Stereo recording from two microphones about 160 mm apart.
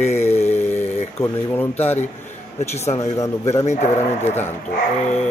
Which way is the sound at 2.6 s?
45° left (ahead or behind).